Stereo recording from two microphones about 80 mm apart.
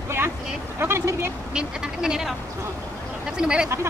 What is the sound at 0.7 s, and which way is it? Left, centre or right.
Speech, right.